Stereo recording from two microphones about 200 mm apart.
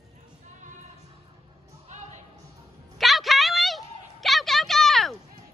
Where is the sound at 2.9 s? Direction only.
Centre (ahead or behind).